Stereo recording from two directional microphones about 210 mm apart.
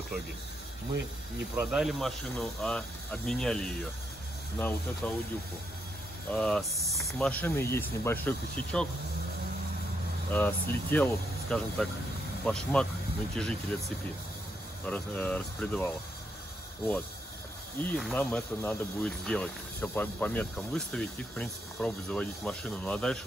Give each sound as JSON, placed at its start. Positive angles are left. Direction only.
{"t": 1.5, "sound": "speech", "side_deg": -5}
{"t": 6.3, "sound": "speech", "side_deg": 5}
{"t": 10.3, "sound": "speech", "side_deg": 10}
{"t": 17.7, "sound": "speech", "side_deg": 5}